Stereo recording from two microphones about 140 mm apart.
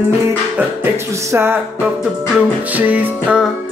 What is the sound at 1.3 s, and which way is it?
Music, 15° right (ahead or behind).